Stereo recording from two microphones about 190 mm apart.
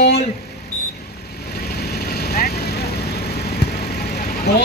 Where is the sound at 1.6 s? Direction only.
55° left (ahead or behind).